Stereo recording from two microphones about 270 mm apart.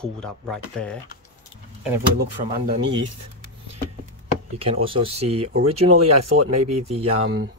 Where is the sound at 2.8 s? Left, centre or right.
Right.